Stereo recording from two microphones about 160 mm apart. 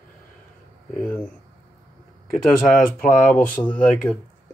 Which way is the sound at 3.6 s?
20° left (ahead or behind).